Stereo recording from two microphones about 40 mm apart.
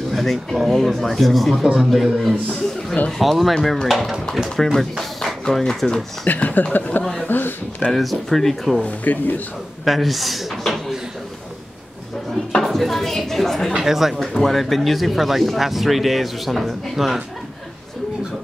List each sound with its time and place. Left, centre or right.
0.1 s speech: centre
6.2 s speech: left
7.2 s a sound: left
7.9 s speech: centre
8.8 s speech: left
9.8 s speech: centre
12.6 s a sound: centre
13.7 s speech: centre
14.3 s speech: centre